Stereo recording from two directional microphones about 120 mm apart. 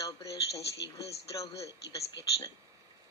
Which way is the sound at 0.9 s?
25° left (ahead or behind).